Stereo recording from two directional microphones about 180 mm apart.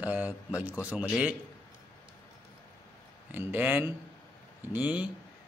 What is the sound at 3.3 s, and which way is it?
Speech, 10° right (ahead or behind).